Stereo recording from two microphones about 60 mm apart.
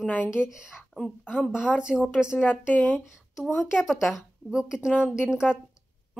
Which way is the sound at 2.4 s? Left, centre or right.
Left.